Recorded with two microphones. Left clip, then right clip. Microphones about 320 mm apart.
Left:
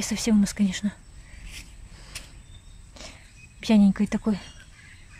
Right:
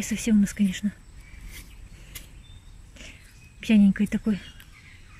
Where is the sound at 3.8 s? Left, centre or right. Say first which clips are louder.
Right 2 dB; left.